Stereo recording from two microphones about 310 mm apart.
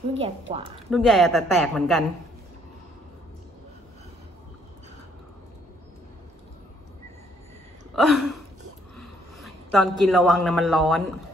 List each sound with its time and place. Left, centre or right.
0.5 s speech: centre
0.8 s a woman's voice: centre
7.9 s a man's voice: centre